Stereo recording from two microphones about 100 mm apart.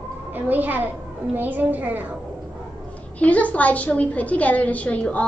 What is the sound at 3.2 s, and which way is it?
A woman's voice, 15° left (ahead or behind).